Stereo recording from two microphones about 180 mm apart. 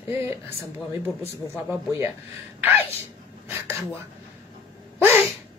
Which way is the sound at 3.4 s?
15° right (ahead or behind).